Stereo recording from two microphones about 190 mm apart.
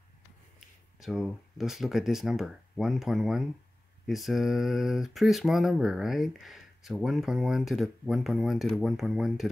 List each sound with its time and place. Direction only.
0.6 s speech: centre (ahead or behind)